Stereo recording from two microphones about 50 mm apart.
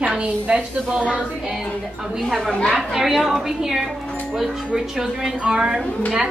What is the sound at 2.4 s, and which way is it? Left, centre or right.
Speech, centre.